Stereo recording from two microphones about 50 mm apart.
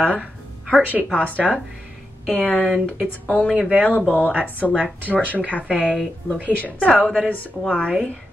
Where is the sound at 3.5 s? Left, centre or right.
Centre.